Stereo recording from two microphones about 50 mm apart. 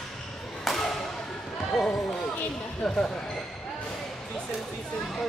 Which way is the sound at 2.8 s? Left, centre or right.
Centre.